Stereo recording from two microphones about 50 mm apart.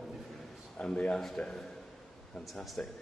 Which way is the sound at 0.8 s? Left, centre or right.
Centre.